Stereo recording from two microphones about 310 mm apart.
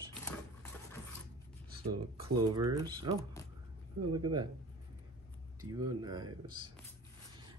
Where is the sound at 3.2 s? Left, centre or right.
Centre.